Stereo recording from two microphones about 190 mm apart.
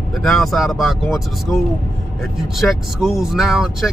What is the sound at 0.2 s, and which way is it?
Speech, centre (ahead or behind).